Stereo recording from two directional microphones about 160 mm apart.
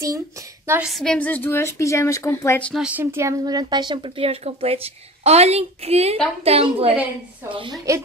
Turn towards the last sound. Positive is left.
turn(degrees=-35)  # may be behind; listen again after turning